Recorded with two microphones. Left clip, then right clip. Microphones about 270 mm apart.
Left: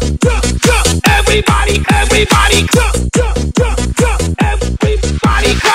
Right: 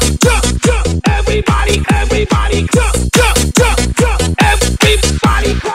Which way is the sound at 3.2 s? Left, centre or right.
Right.